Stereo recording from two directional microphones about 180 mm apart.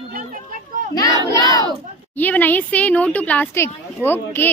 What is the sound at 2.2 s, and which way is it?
A woman's voice, 10° left (ahead or behind).